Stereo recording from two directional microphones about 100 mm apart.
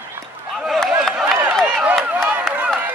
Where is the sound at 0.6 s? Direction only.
5° right (ahead or behind).